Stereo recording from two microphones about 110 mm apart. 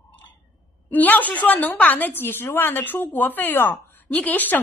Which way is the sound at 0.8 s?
15° left (ahead or behind).